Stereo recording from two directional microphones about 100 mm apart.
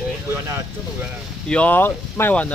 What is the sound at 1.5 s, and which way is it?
Speech, 15° left (ahead or behind).